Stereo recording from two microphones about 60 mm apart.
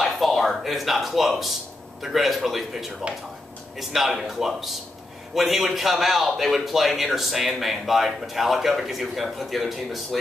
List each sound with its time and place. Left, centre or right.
0.0 s a man's voice: centre